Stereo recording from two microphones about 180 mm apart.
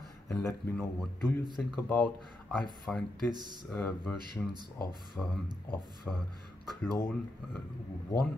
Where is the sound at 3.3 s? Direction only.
25° right (ahead or behind).